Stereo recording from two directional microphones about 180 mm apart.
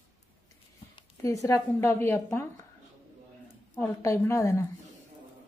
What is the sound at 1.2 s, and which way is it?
A woman's voice, 20° left (ahead or behind).